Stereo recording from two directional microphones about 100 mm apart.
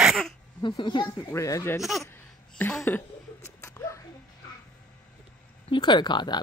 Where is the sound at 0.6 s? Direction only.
50° left (ahead or behind).